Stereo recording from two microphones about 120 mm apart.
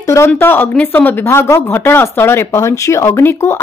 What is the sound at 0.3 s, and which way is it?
Speech, 15° left (ahead or behind).